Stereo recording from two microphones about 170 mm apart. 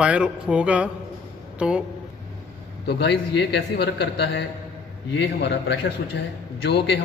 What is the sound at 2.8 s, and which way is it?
A man's voice, 80° left.